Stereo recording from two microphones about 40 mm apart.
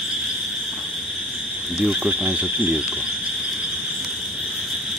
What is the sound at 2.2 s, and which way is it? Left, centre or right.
Cricket, right.